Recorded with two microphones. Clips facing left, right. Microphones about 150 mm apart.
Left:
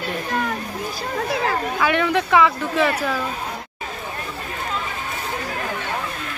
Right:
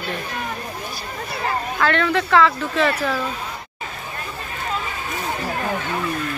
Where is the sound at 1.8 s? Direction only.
15° left (ahead or behind).